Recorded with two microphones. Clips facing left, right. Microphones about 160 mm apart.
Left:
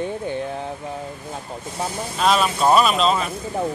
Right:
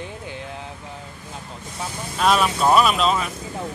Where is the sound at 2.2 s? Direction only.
5° right (ahead or behind).